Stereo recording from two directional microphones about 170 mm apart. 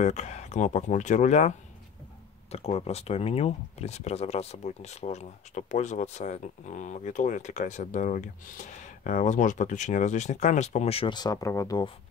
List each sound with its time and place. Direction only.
0.0 s speech: 45° left (ahead or behind)
2.5 s speech: 40° left (ahead or behind); by 11.9 s 20° left (ahead or behind)